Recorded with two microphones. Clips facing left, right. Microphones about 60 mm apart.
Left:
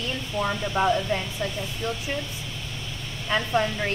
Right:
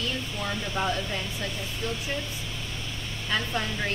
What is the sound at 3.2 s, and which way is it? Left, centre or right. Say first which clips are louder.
Speech: left 5 dB; centre.